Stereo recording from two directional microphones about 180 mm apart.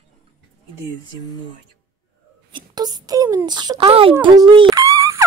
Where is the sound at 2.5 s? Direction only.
20° right (ahead or behind).